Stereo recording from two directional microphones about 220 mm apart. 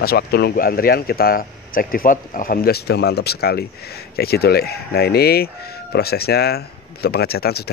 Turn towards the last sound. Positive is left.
turn(degrees=45)  # may be behind; listen again after turning